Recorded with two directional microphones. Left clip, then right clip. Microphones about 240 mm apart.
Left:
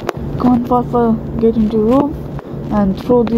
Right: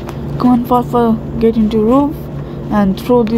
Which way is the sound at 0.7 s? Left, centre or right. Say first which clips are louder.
Right 2 dB; right.